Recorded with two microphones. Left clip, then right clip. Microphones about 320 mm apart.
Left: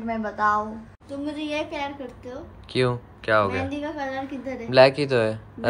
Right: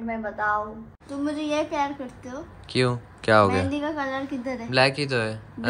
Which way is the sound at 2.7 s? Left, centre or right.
Centre.